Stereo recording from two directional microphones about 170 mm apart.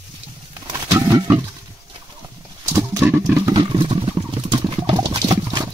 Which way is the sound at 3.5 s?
30° right (ahead or behind).